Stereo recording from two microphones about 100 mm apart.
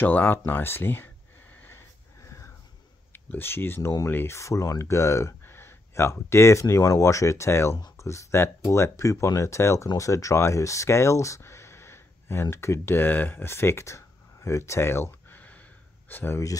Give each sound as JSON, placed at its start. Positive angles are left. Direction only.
{"t": 0.0, "sound": "speech", "side_deg": 20}
{"t": 0.5, "sound": "a sound", "side_deg": 20}
{"t": 3.1, "sound": "speech", "side_deg": 20}